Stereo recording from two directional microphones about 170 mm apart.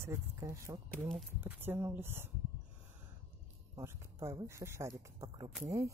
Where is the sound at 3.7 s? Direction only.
15° right (ahead or behind).